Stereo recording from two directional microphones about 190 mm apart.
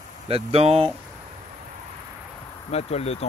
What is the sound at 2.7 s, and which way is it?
Speech, 35° left (ahead or behind).